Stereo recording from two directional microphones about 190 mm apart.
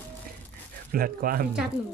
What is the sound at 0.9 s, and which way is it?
Speech, 50° right (ahead or behind).